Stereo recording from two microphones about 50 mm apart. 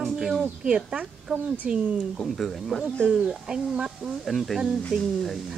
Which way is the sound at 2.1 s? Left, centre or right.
Centre.